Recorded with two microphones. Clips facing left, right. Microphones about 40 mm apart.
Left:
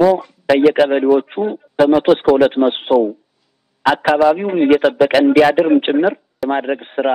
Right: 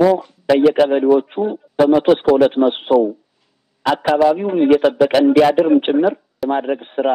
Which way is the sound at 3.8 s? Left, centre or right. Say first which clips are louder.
Left 3 dB; left.